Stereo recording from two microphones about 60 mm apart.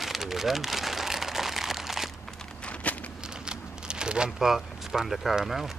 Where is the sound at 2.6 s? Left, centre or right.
Left.